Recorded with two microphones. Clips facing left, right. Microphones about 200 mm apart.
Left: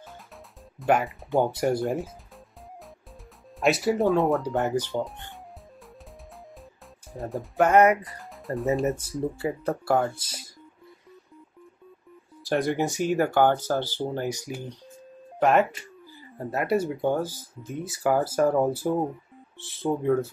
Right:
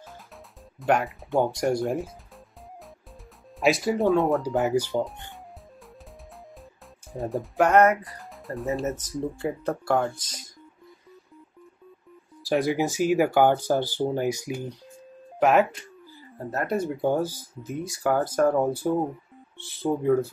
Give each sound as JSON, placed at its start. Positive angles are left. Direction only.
{"t": 0.7, "sound": "speech", "side_deg": 0}
{"t": 3.5, "sound": "speech", "side_deg": 0}
{"t": 7.1, "sound": "speech", "side_deg": 0}
{"t": 12.4, "sound": "speech", "side_deg": 0}
{"t": 16.4, "sound": "speech", "side_deg": 10}
{"t": 16.9, "sound": "speech", "side_deg": -10}
{"t": 17.8, "sound": "speech", "side_deg": 5}